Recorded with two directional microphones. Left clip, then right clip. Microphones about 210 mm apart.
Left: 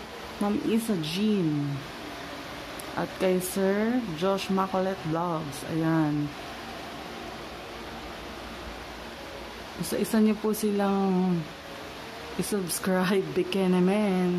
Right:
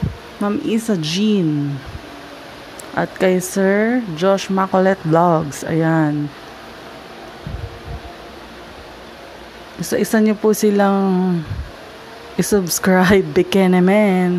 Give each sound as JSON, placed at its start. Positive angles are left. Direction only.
{"t": 0.4, "sound": "speech", "side_deg": -25}
{"t": 3.0, "sound": "speech", "side_deg": -25}
{"t": 9.8, "sound": "speech", "side_deg": -25}
{"t": 12.4, "sound": "speech", "side_deg": -30}